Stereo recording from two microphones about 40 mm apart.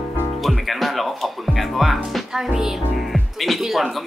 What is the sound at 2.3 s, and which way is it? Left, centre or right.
Music, centre.